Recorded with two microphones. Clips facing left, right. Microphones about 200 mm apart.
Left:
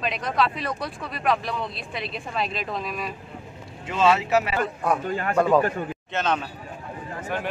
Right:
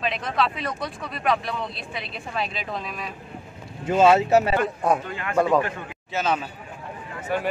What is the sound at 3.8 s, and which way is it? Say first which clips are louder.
Speech: right 4 dB; 35° right (ahead or behind).